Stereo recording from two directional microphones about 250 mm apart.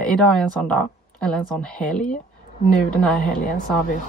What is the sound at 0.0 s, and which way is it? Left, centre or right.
Speech, centre.